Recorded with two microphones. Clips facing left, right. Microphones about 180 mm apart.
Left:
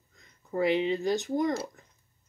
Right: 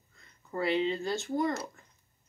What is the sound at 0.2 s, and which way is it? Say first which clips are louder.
Speech: left 5 dB; 15° left (ahead or behind).